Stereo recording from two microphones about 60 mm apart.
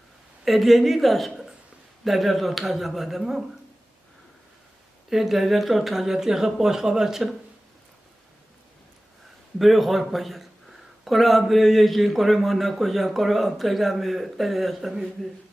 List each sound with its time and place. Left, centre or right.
0.5 s a man's voice: centre
5.1 s speech: centre
9.6 s a man's voice: centre